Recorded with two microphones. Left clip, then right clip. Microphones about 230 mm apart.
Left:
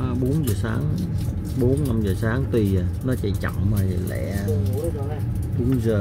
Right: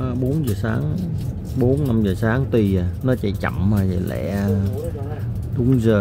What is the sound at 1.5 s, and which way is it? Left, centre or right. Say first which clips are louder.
Speech: right 3 dB; centre.